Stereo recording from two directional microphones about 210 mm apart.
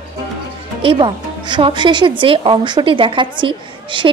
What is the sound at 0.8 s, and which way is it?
A woman's voice, 25° right (ahead or behind).